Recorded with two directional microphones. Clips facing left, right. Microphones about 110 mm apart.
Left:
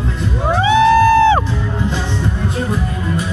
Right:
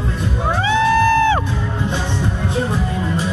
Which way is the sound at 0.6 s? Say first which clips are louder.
Left 5 dB; 15° left (ahead or behind).